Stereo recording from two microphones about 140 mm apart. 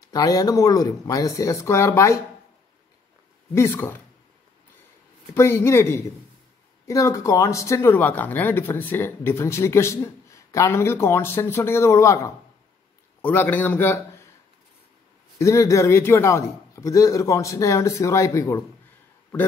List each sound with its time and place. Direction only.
0.1 s speech: 25° left (ahead or behind)
3.5 s speech: 15° left (ahead or behind)
5.3 s a man's voice: 20° left (ahead or behind)
15.3 s speech: 20° left (ahead or behind)